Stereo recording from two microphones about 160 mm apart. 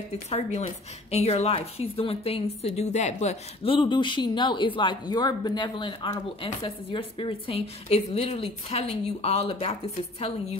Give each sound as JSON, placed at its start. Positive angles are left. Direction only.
{"t": 0.3, "sound": "a woman's voice", "side_deg": 45}